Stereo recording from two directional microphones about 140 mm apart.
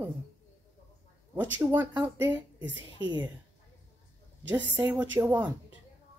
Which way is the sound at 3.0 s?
30° right (ahead or behind).